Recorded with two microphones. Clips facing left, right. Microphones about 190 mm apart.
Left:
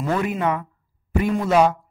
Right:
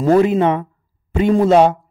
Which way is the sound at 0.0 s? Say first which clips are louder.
Right 11 dB; 40° right (ahead or behind).